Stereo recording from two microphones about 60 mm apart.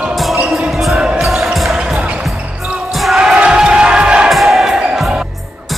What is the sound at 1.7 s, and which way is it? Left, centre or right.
Music, centre.